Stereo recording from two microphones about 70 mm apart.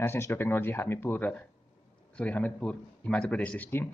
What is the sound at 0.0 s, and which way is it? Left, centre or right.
Speech, left.